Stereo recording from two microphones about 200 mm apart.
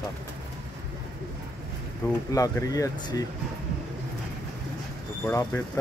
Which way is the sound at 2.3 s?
15° left (ahead or behind).